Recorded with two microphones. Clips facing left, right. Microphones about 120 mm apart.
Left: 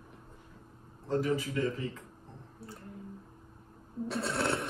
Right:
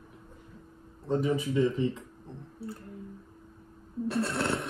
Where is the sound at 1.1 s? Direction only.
20° right (ahead or behind).